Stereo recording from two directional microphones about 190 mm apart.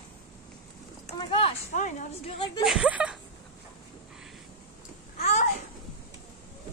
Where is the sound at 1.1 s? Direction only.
25° left (ahead or behind).